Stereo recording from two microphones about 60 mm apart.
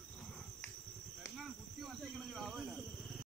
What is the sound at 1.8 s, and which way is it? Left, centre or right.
Cricket, centre.